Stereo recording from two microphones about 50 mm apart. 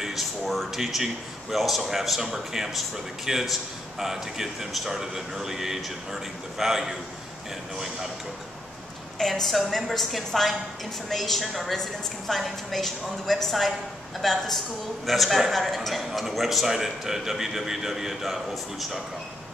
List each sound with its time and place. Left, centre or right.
0.0 s a man's voice: centre
9.2 s a man's voice: centre